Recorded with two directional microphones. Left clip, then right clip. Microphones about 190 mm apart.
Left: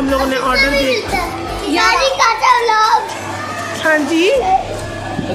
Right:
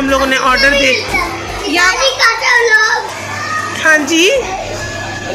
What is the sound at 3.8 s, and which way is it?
Speech, 10° left (ahead or behind).